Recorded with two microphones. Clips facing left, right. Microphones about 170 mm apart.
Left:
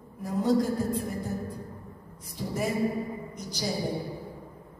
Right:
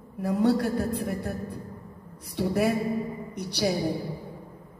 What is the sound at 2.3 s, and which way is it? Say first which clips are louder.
A man's voice: right 5 dB; 70° right (ahead or behind).